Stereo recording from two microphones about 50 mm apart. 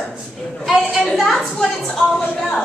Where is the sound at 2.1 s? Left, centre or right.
Centre.